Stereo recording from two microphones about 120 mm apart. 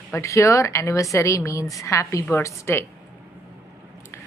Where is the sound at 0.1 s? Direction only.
25° left (ahead or behind).